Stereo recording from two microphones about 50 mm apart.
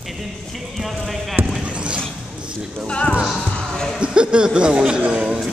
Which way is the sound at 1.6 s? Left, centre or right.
Right.